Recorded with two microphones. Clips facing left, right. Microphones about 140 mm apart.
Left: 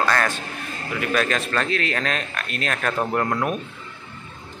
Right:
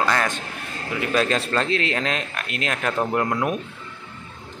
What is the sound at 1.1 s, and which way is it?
Speech, 25° right (ahead or behind).